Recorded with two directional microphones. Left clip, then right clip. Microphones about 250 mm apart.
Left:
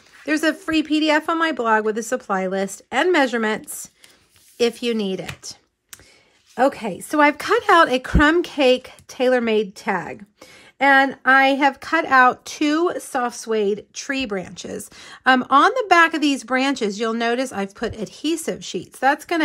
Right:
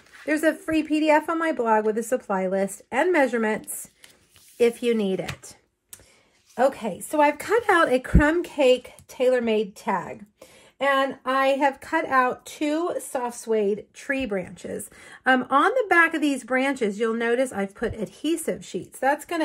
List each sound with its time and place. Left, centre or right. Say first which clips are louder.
0.2 s a woman's voice: left 2 dB; centre
6.5 s speech: left 3 dB; left
7.5 s a woman's voice: left 5 dB; centre; by 10.1 s left
11.2 s a woman's voice: left 5 dB; centre
14.0 s a woman's voice: left 1 dB; centre